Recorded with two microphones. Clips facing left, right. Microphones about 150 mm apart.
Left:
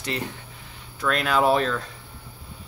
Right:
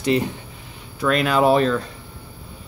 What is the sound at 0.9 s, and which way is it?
Speech, 5° right (ahead or behind).